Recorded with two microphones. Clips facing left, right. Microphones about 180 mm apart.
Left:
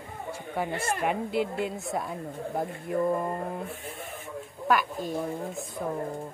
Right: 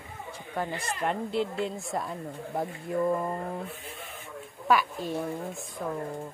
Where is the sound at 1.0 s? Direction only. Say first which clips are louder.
Right 1 dB; 10° left (ahead or behind).